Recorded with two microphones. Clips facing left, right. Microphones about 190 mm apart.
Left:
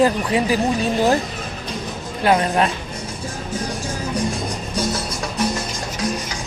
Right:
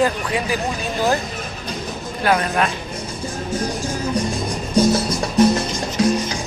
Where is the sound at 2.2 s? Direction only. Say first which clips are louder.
Left 2 dB; 25° left (ahead or behind).